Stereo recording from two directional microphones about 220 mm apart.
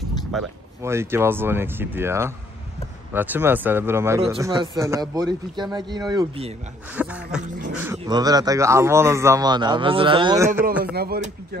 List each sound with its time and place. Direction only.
0.3 s a sound: centre (ahead or behind)
0.8 s a man's voice: 10° right (ahead or behind)
6.9 s a sound: 5° right (ahead or behind)
7.4 s speech: 35° right (ahead or behind)
7.7 s dog: 10° right (ahead or behind)
8.0 s a man's voice: 20° right (ahead or behind)
10.8 s a man's voice: 45° right (ahead or behind)